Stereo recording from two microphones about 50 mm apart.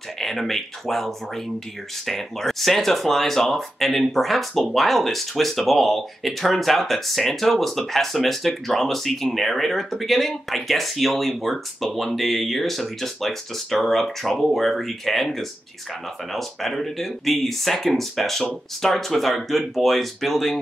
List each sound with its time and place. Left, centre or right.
0.2 s speech: centre